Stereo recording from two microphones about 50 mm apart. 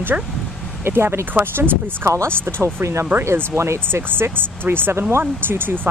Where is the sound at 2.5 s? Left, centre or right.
Right.